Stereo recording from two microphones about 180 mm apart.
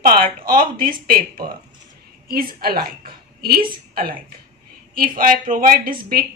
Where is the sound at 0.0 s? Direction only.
50° right (ahead or behind).